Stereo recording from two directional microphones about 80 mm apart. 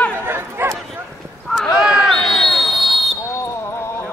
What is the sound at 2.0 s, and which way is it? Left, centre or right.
Basketball bounce, centre.